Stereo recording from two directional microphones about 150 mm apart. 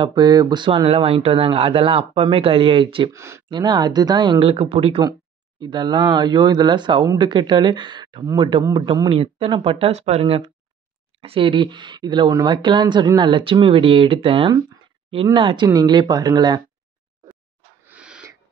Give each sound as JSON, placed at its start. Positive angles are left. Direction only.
{"t": 0.0, "sound": "speech", "side_deg": -30}
{"t": 3.1, "sound": "speech", "side_deg": -20}
{"t": 3.4, "sound": "speech", "side_deg": -30}
{"t": 9.1, "sound": "speech", "side_deg": -40}
{"t": 17.8, "sound": "owl", "side_deg": -5}